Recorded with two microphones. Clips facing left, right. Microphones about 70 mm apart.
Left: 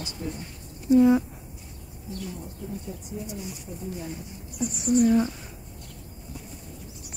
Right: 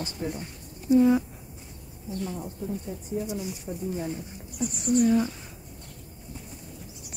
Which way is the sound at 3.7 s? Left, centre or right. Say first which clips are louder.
Right 4 dB; right.